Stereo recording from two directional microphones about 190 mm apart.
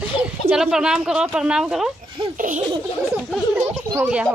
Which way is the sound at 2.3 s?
45° right (ahead or behind).